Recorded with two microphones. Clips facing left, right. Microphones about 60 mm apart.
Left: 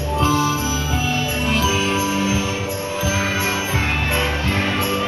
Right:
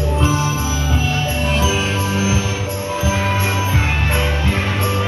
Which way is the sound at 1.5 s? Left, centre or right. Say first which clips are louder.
Left 2 dB; right.